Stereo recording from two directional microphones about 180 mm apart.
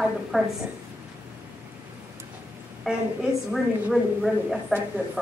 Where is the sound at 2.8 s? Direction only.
Centre (ahead or behind).